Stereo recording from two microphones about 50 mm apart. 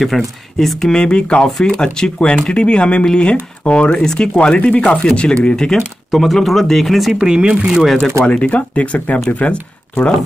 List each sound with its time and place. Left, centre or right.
0.0 s speech: centre; by 4.0 s left
4.0 s speech: centre
4.6 s speech: left
6.1 s speech: centre
7.2 s speech: centre
8.3 s speech: left